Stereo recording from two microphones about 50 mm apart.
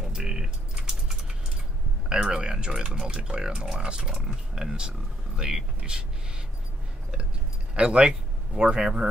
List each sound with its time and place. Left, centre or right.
0.1 s typing: centre
2.2 s speech: centre
7.7 s speech: right